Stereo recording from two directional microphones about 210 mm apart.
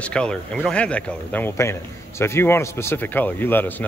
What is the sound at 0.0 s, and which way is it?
Speech, 5° left (ahead or behind).